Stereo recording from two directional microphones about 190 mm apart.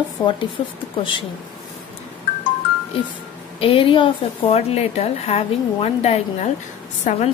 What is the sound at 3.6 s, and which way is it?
A woman's voice, 30° left (ahead or behind).